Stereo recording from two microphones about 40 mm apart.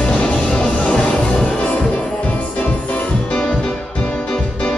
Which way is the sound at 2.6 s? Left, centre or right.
Left.